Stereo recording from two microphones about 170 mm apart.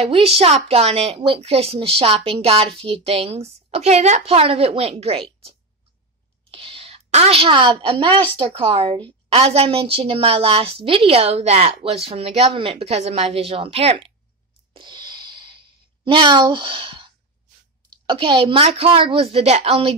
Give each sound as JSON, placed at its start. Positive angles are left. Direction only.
{"t": 0.0, "sound": "a woman's voice", "side_deg": -35}
{"t": 6.5, "sound": "a woman's voice", "side_deg": -35}
{"t": 14.7, "sound": "a sound", "side_deg": -25}
{"t": 16.1, "sound": "a woman's voice", "side_deg": -30}